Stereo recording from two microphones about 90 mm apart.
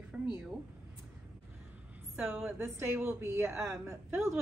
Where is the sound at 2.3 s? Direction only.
25° right (ahead or behind).